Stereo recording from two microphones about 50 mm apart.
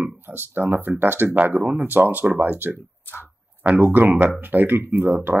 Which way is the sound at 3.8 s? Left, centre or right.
Right.